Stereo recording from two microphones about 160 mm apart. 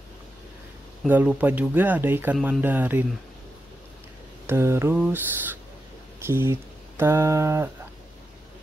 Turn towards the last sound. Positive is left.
turn(degrees=-15)  # may be behind; listen again after turning